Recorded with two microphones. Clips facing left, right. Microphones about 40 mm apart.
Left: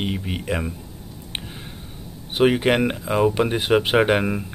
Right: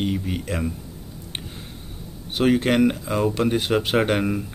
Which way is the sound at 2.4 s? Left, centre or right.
Left.